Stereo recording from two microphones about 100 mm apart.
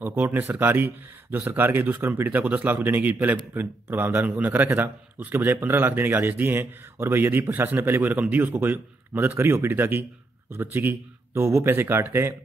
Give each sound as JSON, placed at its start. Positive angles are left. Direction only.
{"t": 0.0, "sound": "a man's voice", "side_deg": -20}